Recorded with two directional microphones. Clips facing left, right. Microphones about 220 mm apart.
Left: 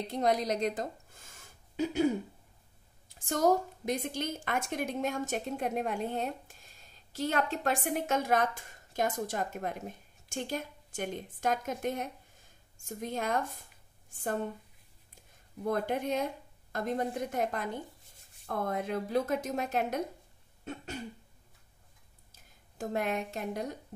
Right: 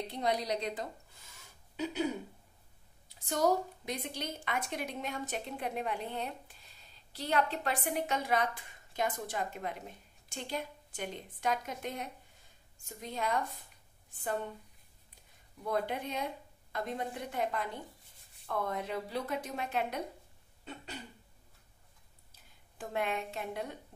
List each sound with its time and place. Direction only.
0.1 s speech: 45° left (ahead or behind)
3.2 s a woman's voice: 50° left (ahead or behind)
15.6 s a woman's voice: 45° left (ahead or behind)
20.6 s a sound: 45° left (ahead or behind)
22.3 s speech: 40° left (ahead or behind)